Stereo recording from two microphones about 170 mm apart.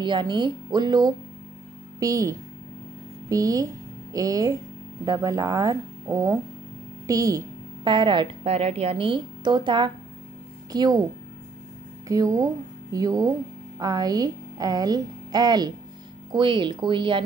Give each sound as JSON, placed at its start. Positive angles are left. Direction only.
{"t": 0.0, "sound": "a woman's voice", "side_deg": -25}
{"t": 12.1, "sound": "speech", "side_deg": -20}